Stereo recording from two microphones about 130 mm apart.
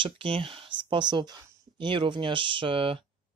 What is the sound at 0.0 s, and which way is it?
Speech, 45° right (ahead or behind).